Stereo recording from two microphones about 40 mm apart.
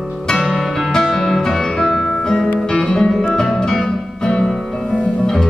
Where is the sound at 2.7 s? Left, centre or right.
Centre.